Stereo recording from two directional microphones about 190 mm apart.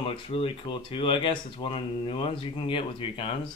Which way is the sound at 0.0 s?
30° left (ahead or behind).